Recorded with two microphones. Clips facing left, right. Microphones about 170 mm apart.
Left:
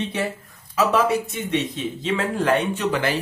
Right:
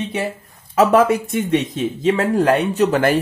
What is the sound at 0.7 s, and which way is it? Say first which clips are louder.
Speech: right 6 dB; 50° right (ahead or behind).